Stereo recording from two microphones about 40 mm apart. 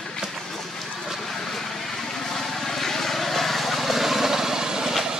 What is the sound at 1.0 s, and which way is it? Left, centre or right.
Vehicle, centre.